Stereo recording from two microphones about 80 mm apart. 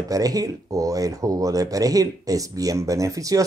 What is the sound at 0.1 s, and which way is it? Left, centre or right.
Speech, right.